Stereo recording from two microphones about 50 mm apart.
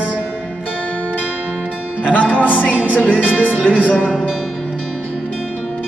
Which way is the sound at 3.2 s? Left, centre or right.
Right.